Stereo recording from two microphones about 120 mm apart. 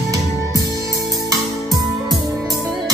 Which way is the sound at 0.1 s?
25° right (ahead or behind).